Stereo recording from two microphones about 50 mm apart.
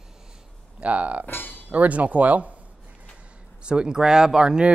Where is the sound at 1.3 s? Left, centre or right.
Left.